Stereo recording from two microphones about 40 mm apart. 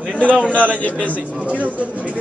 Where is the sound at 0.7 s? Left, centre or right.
Left.